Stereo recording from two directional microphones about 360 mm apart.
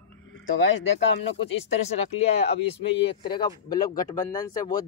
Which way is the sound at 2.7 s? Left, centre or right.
Centre.